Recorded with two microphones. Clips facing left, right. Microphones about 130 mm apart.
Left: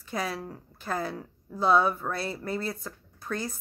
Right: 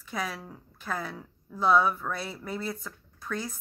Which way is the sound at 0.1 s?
Centre (ahead or behind).